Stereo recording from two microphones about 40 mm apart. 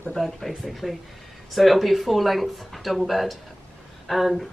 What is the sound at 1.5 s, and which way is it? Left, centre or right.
Speech, centre.